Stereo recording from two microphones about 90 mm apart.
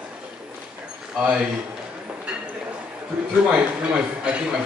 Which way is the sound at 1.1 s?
5° right (ahead or behind).